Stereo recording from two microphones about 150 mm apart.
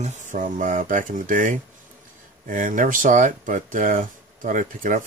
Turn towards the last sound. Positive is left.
turn(degrees=-60)  # may be behind; listen again after turning